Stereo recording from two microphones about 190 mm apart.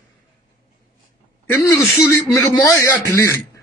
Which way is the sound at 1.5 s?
15° left (ahead or behind).